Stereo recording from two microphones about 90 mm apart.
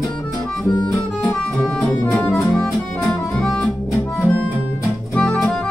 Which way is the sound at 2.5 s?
10° left (ahead or behind).